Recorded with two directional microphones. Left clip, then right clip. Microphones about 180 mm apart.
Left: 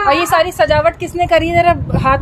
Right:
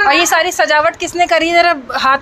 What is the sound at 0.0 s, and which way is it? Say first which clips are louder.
A woman's voice: right 1 dB; 5° right (ahead or behind).